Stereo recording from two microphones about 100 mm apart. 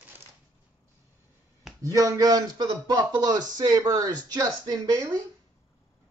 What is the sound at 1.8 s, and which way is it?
Speech, 35° right (ahead or behind).